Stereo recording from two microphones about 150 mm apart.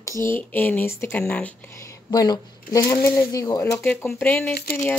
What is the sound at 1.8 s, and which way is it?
Speech, 25° left (ahead or behind).